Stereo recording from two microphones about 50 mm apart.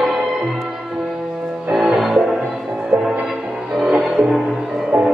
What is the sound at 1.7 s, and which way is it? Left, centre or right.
Music, centre.